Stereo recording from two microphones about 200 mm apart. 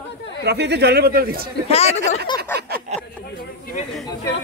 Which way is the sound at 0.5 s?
55° right (ahead or behind).